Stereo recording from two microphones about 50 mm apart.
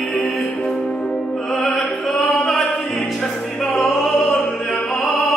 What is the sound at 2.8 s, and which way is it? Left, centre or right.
Music, centre.